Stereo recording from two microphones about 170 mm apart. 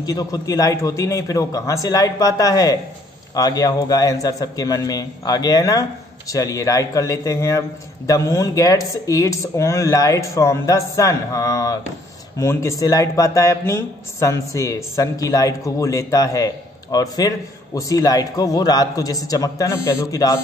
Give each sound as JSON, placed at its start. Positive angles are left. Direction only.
{"t": 0.0, "sound": "speech", "side_deg": 20}